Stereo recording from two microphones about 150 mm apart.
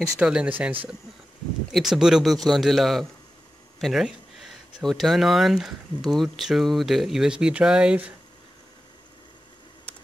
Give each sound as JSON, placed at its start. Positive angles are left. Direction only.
{"t": 0.2, "sound": "speech", "side_deg": -5}